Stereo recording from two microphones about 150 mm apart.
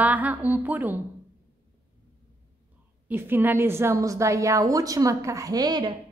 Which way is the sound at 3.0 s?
15° right (ahead or behind).